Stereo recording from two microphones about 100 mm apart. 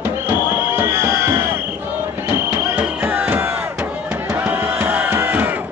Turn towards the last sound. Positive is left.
turn(degrees=-20)  # may be behind; listen again after turning